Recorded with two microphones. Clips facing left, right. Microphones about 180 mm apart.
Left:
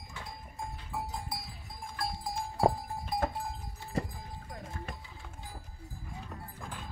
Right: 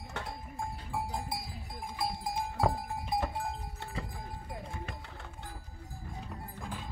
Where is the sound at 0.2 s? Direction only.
70° right (ahead or behind).